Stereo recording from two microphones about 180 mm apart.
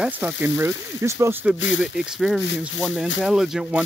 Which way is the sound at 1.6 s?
90° left.